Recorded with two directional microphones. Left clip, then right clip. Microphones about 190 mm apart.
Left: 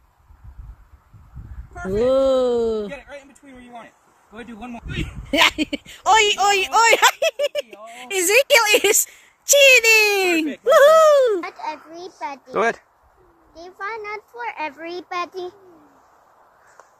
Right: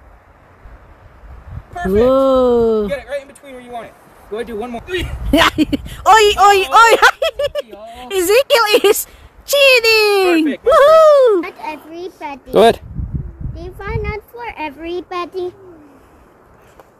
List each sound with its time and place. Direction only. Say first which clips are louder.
1.9 s speech: right 5 dB; 5° right (ahead or behind)
5.3 s speech: right 5 dB; 10° right (ahead or behind)
11.2 s speech: right 7 dB; 10° right (ahead or behind)
12.4 s speech: right 11 dB; 20° right (ahead or behind)
13.6 s speech: right 4 dB; centre (ahead or behind)